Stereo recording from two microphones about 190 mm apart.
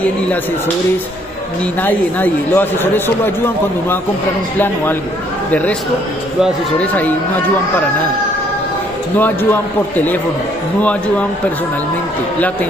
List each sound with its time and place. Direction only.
1.8 s a man's voice: 10° left (ahead or behind)
5.5 s a man's voice: 10° left (ahead or behind)
9.2 s a man's voice: 10° left (ahead or behind)